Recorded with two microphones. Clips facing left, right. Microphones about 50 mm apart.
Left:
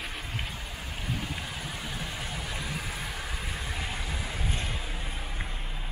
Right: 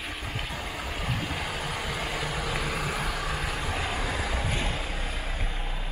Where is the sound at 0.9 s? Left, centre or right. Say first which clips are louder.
Right 2 dB; right.